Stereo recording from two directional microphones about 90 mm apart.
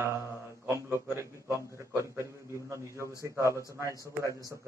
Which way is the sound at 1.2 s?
30° right (ahead or behind).